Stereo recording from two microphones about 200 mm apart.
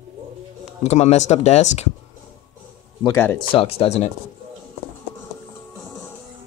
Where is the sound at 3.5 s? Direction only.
30° left (ahead or behind).